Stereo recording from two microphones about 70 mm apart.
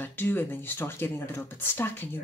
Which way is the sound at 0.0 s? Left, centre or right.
Left.